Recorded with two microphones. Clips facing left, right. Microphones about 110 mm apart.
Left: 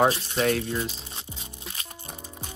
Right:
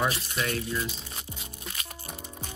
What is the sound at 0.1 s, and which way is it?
Speech, 30° left (ahead or behind).